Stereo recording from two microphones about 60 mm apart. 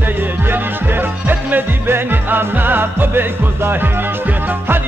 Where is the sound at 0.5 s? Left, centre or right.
Right.